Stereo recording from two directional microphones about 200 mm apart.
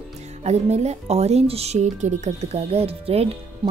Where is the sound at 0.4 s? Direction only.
35° right (ahead or behind).